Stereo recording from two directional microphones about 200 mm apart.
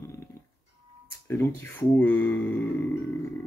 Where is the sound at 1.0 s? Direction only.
15° left (ahead or behind).